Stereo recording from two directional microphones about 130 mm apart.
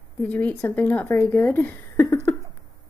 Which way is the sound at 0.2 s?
15° left (ahead or behind).